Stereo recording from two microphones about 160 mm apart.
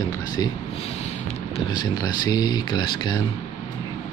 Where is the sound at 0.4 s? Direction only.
25° left (ahead or behind).